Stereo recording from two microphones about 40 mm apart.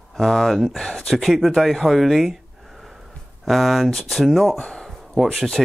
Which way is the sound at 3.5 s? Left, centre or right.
Centre.